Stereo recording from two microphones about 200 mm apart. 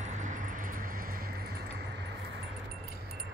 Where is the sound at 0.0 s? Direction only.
35° right (ahead or behind).